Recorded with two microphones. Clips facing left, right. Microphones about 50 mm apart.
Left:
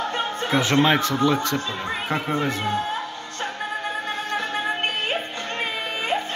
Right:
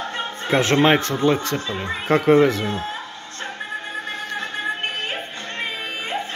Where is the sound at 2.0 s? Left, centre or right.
Right.